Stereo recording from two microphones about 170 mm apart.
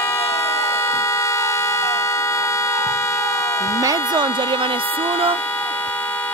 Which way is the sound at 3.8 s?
25° right (ahead or behind).